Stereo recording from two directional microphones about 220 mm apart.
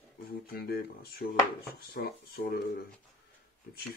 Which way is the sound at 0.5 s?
45° left (ahead or behind).